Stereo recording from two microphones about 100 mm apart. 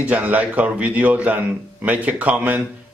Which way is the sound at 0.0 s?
15° right (ahead or behind).